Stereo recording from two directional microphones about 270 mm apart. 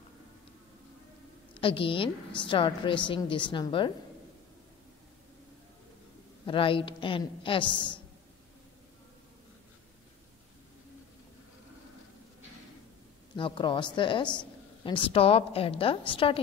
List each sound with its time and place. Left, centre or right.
1.5 s a woman's voice: centre
6.4 s a woman's voice: centre
13.4 s a woman's voice: centre